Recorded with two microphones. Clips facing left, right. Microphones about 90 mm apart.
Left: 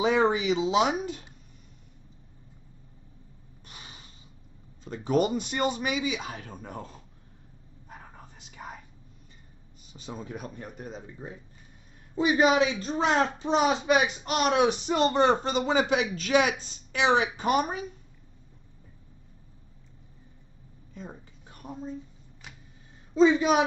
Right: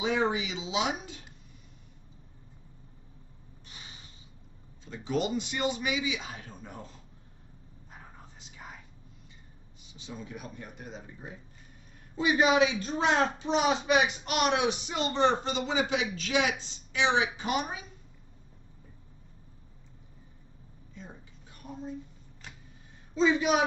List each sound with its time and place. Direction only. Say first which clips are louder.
0.0 s speech: left 5 dB; 50° left (ahead or behind)
4.8 s speech: left 6 dB; 50° left (ahead or behind)
8.4 s whispering: left 6 dB; 55° left (ahead or behind)
9.9 s speech: left 4 dB; 45° left (ahead or behind)
12.2 s speech: left 2 dB; 35° left (ahead or behind)
20.9 s a sound: left 5 dB; 50° left (ahead or behind)
23.1 s speech: left 4 dB; 35° left (ahead or behind)